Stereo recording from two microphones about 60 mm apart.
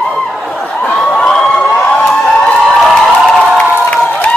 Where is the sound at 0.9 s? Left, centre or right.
Centre.